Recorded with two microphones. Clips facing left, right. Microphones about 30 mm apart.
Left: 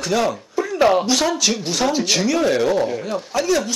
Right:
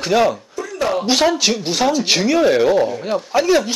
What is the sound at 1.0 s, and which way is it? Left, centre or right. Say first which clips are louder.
Speech: right 3 dB; right.